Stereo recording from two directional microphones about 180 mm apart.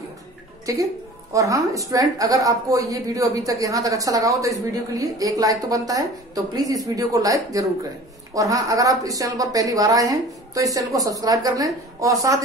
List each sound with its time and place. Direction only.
0.7 s a woman's voice: 20° right (ahead or behind)